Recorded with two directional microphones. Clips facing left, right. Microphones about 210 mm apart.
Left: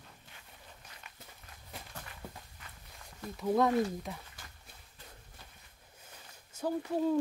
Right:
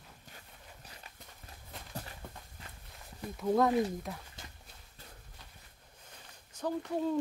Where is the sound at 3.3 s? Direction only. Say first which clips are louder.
Even; centre (ahead or behind).